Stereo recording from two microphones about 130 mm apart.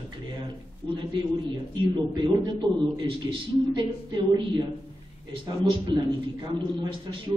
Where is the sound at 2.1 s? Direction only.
35° right (ahead or behind).